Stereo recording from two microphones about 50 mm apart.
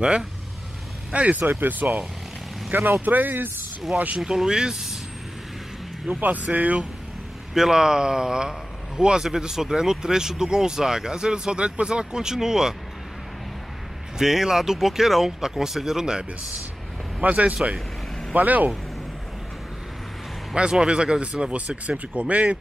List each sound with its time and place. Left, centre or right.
1.1 s speech: right
1.4 s speech: right
3.9 s speech: right
4.2 s a man's voice: centre
6.0 s speech: right
7.5 s a man's voice: centre
14.1 s a man's voice: centre
17.2 s speech: right
20.8 s speech: centre